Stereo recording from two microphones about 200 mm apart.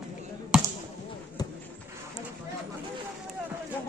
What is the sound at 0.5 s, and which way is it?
Basketball bounce, 5° right (ahead or behind).